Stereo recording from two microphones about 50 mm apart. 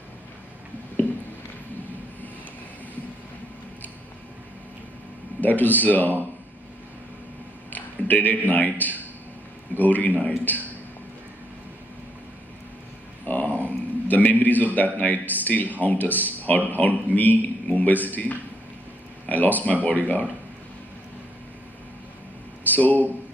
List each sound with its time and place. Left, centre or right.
5.4 s speech: left
7.7 s a sound: left
8.5 s speech: left
13.2 s a sound: left
13.7 s a man's voice: left
22.7 s a man's voice: left